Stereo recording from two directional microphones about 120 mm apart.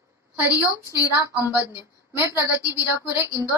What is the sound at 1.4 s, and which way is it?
Speech, 30° left (ahead or behind).